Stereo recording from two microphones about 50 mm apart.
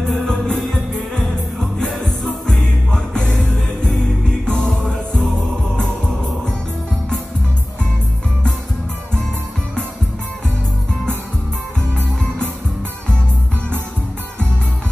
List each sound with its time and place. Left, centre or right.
0.0 s music: centre
2.2 s music: centre
4.5 s music: centre